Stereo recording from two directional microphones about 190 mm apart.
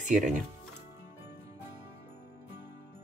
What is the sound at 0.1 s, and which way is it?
Speech, 40° right (ahead or behind).